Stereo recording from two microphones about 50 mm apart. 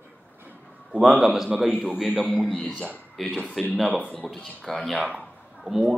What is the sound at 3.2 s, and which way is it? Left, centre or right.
A man's voice, centre.